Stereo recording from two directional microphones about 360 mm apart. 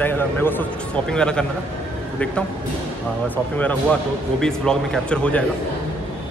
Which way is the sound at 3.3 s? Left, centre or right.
Centre.